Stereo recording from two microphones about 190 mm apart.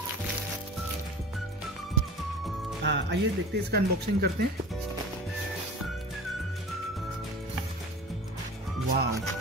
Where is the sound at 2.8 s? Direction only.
65° right (ahead or behind).